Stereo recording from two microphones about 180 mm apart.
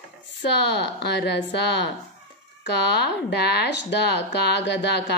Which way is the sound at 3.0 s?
70° left (ahead or behind).